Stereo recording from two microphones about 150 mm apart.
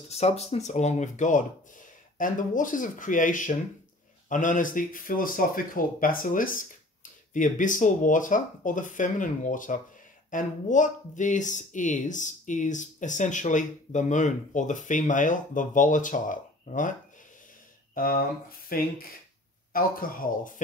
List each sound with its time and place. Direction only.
0.1 s speech: 45° left (ahead or behind); by 16.9 s 60° left (ahead or behind)
17.9 s speech: 70° left (ahead or behind)